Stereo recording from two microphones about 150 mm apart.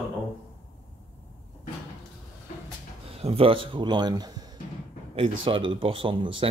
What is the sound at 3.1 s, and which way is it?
Speech, 40° right (ahead or behind).